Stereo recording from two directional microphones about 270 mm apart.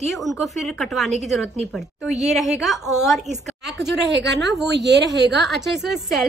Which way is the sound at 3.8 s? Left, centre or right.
Right.